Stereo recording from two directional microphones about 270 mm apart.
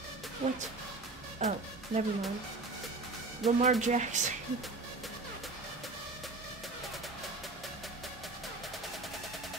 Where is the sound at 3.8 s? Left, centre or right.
Right.